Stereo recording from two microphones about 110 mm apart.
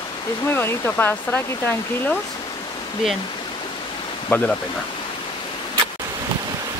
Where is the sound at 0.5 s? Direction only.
20° left (ahead or behind).